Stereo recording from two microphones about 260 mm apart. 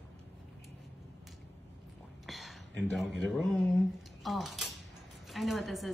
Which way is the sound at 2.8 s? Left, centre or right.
Centre.